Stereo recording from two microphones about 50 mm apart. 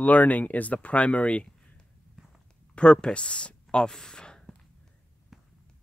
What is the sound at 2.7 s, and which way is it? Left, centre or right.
Speech, centre.